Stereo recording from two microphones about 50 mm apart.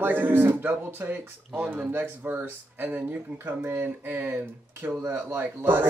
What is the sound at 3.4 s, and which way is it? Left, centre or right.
Speech, right.